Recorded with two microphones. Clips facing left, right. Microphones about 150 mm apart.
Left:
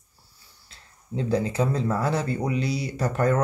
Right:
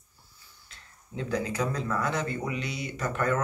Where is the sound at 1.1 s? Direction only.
30° left (ahead or behind).